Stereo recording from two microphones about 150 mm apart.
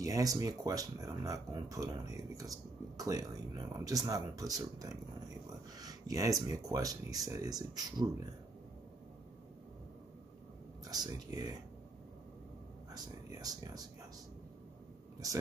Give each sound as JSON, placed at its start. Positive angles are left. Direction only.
{"t": 0.0, "sound": "speech", "side_deg": -25}
{"t": 10.8, "sound": "speech", "side_deg": -25}
{"t": 12.9, "sound": "speech", "side_deg": -25}
{"t": 15.2, "sound": "speech", "side_deg": -25}